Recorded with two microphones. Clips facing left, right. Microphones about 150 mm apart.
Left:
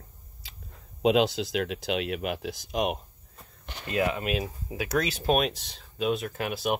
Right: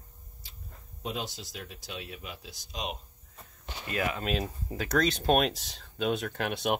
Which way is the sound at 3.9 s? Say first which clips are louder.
Left 5 dB; 25° left (ahead or behind).